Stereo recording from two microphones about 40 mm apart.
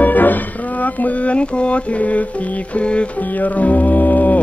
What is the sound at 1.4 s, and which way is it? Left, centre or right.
Music, left.